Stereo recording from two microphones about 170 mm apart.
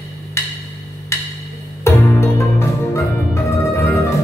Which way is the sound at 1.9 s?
15° left (ahead or behind).